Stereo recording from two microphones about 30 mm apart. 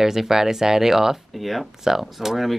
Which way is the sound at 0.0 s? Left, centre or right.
Centre.